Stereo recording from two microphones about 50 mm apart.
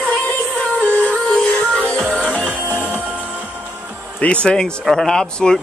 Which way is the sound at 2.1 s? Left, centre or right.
Left.